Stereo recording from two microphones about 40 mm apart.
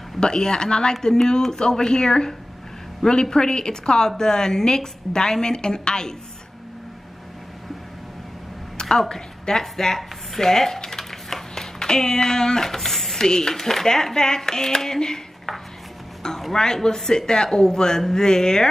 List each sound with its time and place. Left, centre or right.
0.2 s speech: centre
8.7 s a sound: centre
9.1 s speech: centre
16.2 s music: centre
16.5 s speech: centre